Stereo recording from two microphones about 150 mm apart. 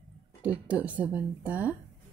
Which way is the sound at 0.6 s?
10° right (ahead or behind).